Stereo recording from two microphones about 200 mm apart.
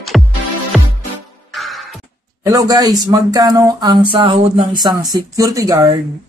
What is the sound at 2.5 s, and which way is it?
Speech, 20° right (ahead or behind).